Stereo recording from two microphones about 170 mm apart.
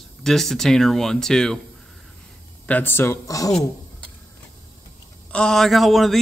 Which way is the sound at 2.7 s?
10° left (ahead or behind).